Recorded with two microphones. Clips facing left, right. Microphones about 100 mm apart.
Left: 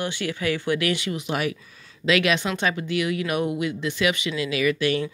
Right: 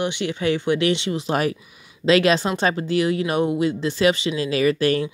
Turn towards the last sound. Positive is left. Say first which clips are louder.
# right 3 dB
turn(degrees=-35)  # may be behind; listen again after turning